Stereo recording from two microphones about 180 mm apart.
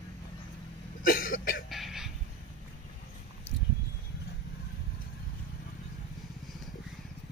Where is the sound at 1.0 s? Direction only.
50° left (ahead or behind).